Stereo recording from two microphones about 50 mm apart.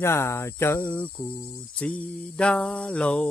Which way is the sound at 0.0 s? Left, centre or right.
Left.